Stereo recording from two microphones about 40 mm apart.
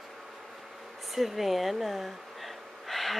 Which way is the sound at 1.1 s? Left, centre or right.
Centre.